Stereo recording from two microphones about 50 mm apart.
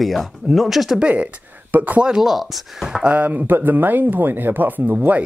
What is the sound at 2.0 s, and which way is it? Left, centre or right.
Speech, centre.